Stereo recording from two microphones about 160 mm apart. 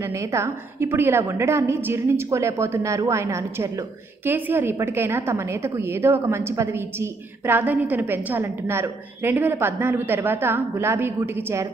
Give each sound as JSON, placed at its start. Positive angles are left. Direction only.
{"t": 0.0, "sound": "a woman's voice", "side_deg": -15}